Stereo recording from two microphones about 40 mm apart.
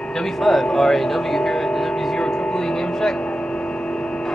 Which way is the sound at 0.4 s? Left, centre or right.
Centre.